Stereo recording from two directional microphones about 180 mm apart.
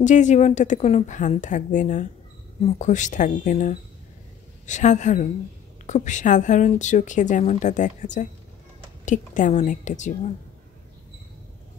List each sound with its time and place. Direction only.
0.0 s a woman's voice: 45° left (ahead or behind)